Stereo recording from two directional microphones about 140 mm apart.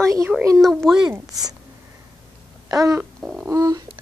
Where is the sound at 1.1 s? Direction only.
25° right (ahead or behind).